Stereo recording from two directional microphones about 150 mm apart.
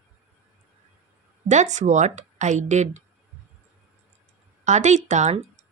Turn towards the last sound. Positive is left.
turn(degrees=-55)  # may be behind; listen again after turning